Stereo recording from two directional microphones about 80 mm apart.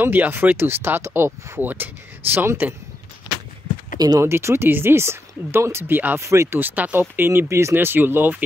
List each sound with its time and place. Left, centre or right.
0.0 s speech: right
4.2 s speech: right
6.2 s speech: right
6.6 s speech: right
7.7 s speech: right